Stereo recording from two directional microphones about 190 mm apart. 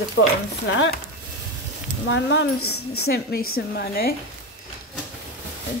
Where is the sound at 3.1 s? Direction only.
55° left (ahead or behind).